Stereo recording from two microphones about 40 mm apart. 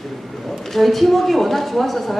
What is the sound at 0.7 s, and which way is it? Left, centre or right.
A woman's voice, centre.